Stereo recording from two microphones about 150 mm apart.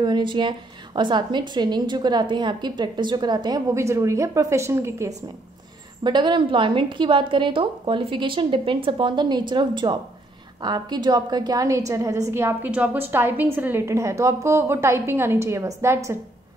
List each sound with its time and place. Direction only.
0.0 s a woman's voice: 30° right (ahead or behind)
6.0 s a woman's voice: 30° right (ahead or behind)